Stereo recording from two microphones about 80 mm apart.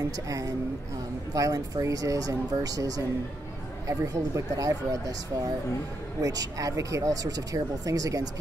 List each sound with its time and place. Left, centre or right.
1.3 s speech: right